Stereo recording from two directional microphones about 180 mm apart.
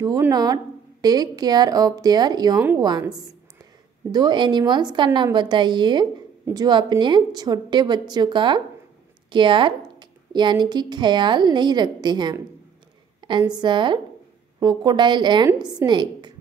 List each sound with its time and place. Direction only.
0.3 s a woman's voice: 20° right (ahead or behind)